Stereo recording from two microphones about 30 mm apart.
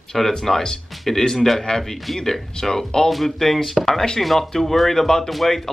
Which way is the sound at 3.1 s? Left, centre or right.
Centre.